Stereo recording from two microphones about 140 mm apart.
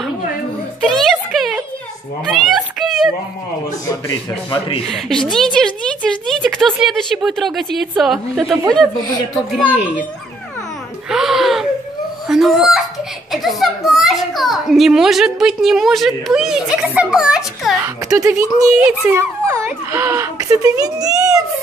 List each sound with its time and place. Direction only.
0.8 s a sound: centre (ahead or behind)
4.5 s speech: 35° left (ahead or behind)
4.8 s a woman's voice: 5° left (ahead or behind)
9.7 s speech: 10° right (ahead or behind)
11.1 s a sound: 5° right (ahead or behind)
12.3 s fowl: centre (ahead or behind)
13.3 s a woman's voice: centre (ahead or behind)
17.8 s a child's voice: 20° right (ahead or behind)